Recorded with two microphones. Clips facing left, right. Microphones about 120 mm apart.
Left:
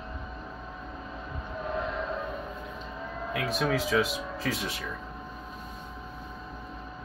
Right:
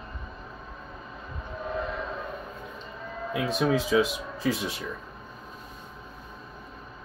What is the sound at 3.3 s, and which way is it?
Speech, 20° right (ahead or behind).